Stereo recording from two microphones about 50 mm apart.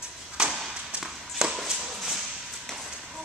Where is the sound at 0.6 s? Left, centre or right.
Centre.